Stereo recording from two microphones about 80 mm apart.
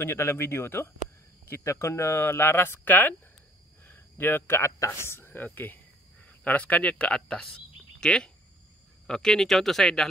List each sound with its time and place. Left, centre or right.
0.0 s speech: left
5.0 s speech: left; by 10.0 s centre